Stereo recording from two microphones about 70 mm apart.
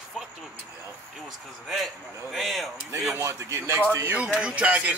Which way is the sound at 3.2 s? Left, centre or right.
Right.